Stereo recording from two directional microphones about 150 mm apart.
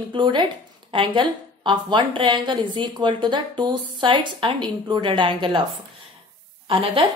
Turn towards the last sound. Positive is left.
turn(degrees=-35)  # may be behind; listen again after turning